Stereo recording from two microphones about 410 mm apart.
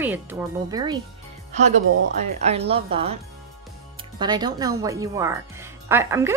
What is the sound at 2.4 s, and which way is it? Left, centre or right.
Speech, centre.